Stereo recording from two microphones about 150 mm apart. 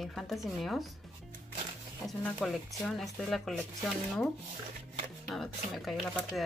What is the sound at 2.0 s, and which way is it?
Speech, centre (ahead or behind).